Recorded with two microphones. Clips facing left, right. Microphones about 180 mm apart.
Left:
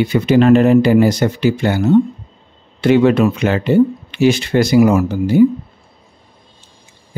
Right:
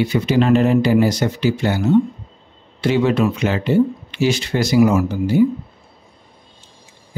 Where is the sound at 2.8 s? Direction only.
60° left (ahead or behind).